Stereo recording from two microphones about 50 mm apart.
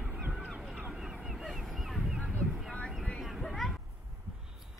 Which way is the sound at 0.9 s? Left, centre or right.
Centre.